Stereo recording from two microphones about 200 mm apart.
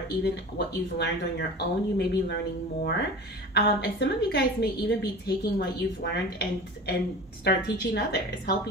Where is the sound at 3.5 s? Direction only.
55° left (ahead or behind).